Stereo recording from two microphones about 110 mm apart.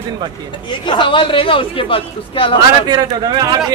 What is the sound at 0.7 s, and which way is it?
A man's voice, 50° left (ahead or behind).